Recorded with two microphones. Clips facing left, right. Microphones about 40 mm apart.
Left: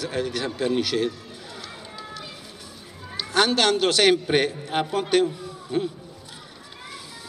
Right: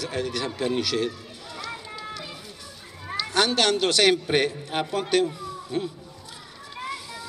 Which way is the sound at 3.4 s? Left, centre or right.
Centre.